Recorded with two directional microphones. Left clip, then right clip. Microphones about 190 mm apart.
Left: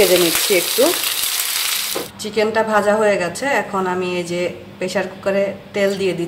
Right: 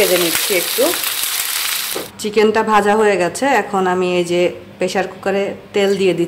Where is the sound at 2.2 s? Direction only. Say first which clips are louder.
Right 4 dB; 55° right (ahead or behind).